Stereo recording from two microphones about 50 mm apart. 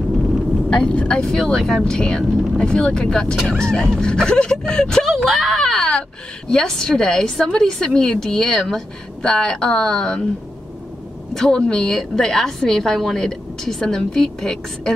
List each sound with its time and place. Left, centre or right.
0.7 s a woman's voice: centre
5.0 s a woman's voice: centre
11.3 s a woman's voice: centre